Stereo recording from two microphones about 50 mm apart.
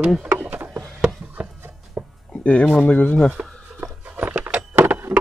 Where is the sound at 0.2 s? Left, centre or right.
Right.